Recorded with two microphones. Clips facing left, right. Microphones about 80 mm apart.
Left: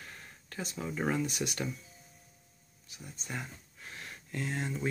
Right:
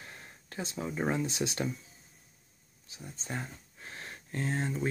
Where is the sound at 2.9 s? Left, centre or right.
Right.